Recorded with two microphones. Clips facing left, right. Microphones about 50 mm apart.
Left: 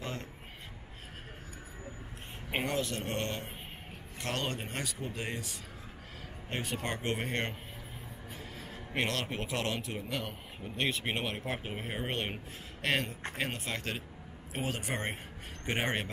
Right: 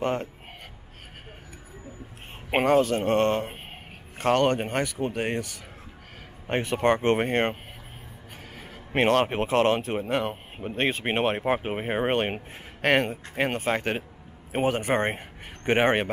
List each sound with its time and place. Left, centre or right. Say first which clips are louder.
0.0 s speech: right 13 dB; right
2.5 s speech: right 12 dB; right
8.5 s speech: right 9 dB; right